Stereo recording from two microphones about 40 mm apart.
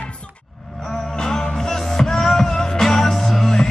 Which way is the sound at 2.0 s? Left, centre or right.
Centre.